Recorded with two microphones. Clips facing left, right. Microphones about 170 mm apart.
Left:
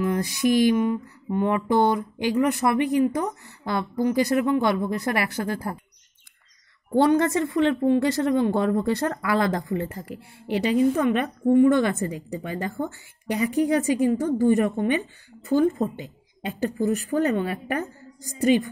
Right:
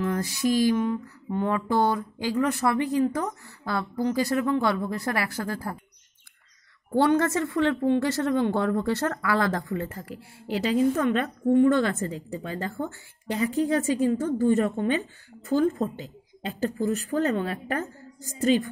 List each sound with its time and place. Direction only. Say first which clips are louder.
0.0 s lullaby: left 3 dB; 15° left (ahead or behind)
0.6 s speech: left 3 dB; 15° left (ahead or behind)
6.9 s a woman's voice: left 2 dB; 20° left (ahead or behind)